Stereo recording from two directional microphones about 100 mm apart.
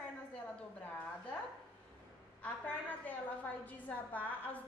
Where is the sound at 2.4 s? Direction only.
15° left (ahead or behind).